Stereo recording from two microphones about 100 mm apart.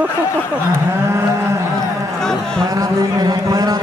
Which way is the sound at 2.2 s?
5° left (ahead or behind).